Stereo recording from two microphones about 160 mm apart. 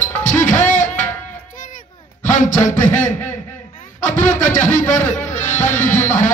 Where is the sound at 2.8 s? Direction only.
10° left (ahead or behind).